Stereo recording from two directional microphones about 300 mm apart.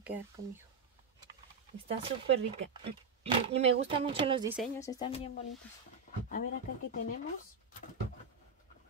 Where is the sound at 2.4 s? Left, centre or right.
Right.